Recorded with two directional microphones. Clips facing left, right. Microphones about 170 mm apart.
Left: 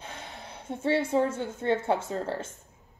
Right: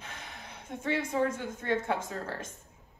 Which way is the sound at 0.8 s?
30° left (ahead or behind).